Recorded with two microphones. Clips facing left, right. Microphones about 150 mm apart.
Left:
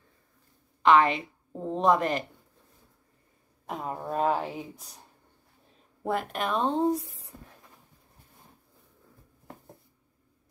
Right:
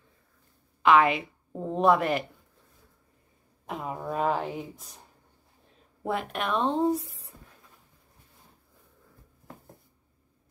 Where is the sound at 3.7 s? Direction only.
Centre (ahead or behind).